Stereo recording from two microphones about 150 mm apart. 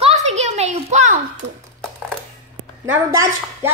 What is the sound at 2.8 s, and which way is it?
Speech, 15° right (ahead or behind).